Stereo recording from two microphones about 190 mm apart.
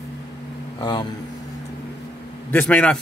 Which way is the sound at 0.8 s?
20° left (ahead or behind).